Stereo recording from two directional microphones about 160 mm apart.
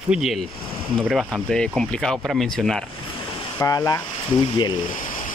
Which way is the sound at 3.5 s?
20° left (ahead or behind).